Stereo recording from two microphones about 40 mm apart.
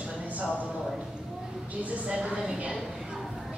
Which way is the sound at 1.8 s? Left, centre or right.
Right.